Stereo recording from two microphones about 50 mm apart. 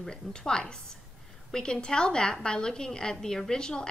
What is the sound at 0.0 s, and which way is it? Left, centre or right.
A woman's voice, centre.